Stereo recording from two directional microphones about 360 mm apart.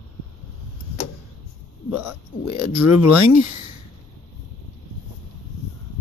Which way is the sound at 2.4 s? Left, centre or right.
Left.